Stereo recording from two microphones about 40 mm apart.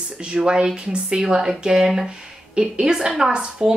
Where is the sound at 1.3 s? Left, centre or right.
Centre.